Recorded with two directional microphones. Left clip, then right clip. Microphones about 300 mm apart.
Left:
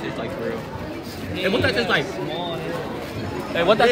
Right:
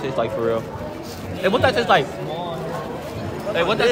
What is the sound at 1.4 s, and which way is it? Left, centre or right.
Speech, right.